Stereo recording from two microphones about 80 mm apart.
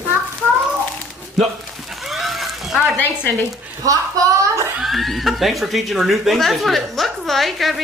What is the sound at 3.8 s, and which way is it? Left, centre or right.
Speech, right.